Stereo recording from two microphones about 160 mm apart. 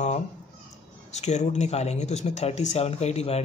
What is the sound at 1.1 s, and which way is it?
Speech, 45° left (ahead or behind).